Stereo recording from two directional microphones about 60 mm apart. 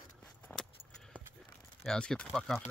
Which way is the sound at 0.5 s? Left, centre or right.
Left.